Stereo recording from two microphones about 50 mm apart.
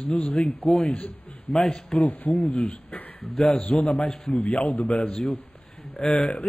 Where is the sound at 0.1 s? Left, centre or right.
Left.